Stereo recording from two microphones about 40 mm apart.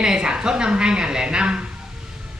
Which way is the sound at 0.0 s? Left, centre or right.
Centre.